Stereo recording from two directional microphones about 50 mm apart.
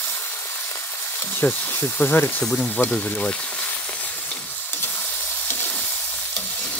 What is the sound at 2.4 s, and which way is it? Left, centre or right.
Speech, centre.